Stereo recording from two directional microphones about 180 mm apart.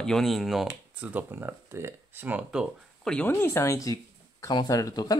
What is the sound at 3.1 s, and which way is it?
Speech, 15° left (ahead or behind).